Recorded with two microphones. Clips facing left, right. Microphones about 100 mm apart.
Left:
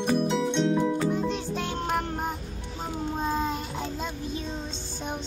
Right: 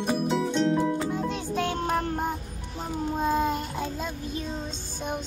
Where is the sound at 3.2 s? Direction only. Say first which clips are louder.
Right 4 dB; 5° right (ahead or behind).